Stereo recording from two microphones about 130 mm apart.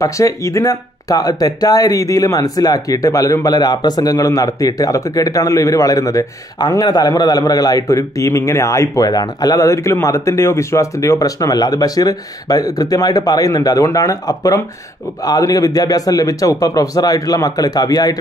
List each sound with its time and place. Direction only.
0.0 s speech: 25° left (ahead or behind)